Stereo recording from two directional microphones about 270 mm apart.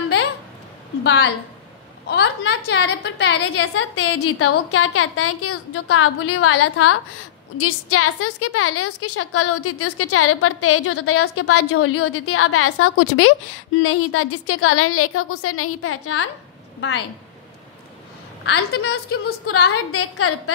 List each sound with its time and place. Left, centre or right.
1.0 s a woman's voice: left
18.4 s a woman's voice: left